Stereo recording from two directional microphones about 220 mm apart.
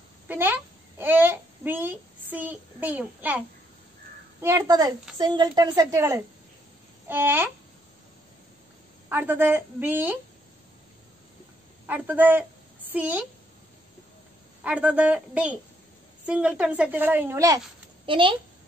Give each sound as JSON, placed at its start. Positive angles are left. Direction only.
{"t": 0.3, "sound": "a child's voice", "side_deg": -10}
{"t": 9.1, "sound": "a woman's voice", "side_deg": -10}
{"t": 11.8, "sound": "a woman's voice", "side_deg": -10}
{"t": 14.6, "sound": "a woman's voice", "side_deg": -5}
{"t": 18.0, "sound": "speech", "side_deg": -25}